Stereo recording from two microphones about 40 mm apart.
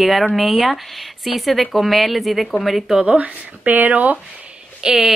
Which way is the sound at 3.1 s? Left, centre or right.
Right.